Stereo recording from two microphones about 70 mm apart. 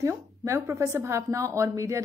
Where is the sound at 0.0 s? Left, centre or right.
Right.